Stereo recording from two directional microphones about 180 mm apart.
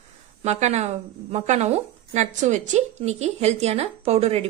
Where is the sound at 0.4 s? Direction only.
40° right (ahead or behind).